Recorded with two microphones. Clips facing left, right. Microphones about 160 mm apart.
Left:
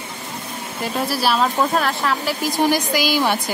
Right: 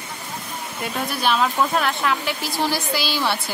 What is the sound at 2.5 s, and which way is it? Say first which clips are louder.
Speech: left 5 dB; 15° left (ahead or behind).